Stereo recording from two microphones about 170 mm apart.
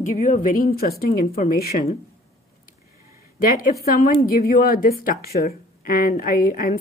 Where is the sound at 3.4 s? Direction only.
55° left (ahead or behind).